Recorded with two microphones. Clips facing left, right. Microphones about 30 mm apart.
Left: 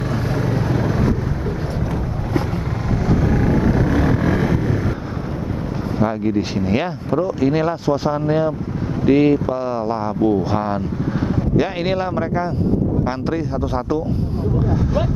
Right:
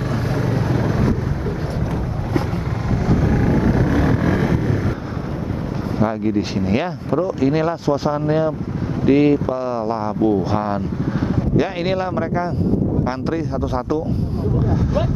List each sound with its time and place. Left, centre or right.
0.7 s vehicle: centre
3.1 s vehicle: centre
5.9 s speech: centre